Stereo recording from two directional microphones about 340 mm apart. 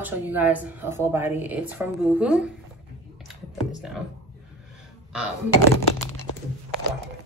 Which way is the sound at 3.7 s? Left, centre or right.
Centre.